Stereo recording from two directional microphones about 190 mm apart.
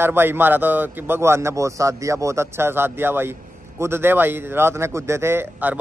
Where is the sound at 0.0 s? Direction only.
10° right (ahead or behind).